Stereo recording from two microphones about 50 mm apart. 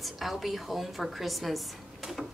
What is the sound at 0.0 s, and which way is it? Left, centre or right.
A woman's voice, centre.